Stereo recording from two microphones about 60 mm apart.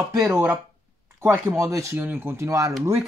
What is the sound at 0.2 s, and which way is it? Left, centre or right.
Speech, right.